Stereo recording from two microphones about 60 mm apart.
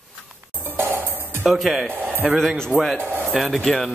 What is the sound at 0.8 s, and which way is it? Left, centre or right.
Music, right.